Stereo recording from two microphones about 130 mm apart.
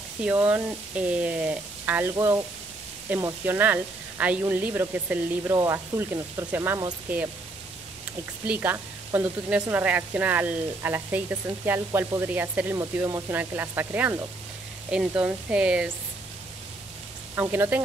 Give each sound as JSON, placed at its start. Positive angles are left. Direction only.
{"t": 0.2, "sound": "speech", "side_deg": -10}
{"t": 2.1, "sound": "speech", "side_deg": -25}
{"t": 8.5, "sound": "speech", "side_deg": -15}
{"t": 17.4, "sound": "speech", "side_deg": -15}